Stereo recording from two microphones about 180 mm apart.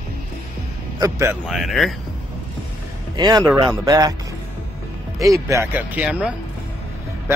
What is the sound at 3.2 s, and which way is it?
Speech, 25° right (ahead or behind).